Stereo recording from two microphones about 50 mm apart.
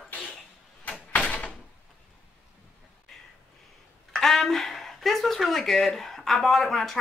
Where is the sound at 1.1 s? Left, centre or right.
Left.